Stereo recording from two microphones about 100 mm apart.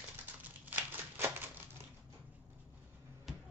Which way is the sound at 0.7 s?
20° right (ahead or behind).